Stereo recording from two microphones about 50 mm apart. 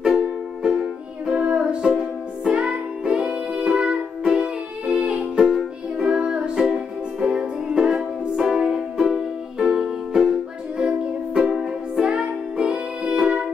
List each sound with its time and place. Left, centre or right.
1.3 s music: right
10.8 s music: right
11.4 s music: centre